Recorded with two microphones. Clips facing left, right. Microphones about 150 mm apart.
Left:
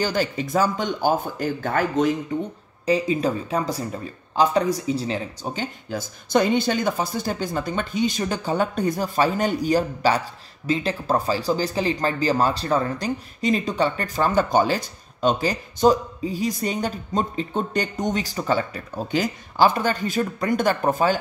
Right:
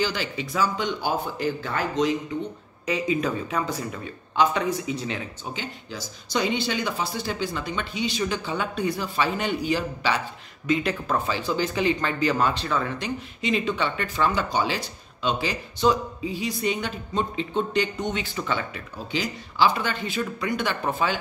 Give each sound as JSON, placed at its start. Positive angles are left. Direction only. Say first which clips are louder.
{"t": 0.0, "sound": "speech", "louder": "left 4 dB", "side_deg": 45}
{"t": 2.8, "sound": "speech", "louder": "left 4 dB", "side_deg": 35}
{"t": 10.7, "sound": "speech", "louder": "left 2 dB", "side_deg": 30}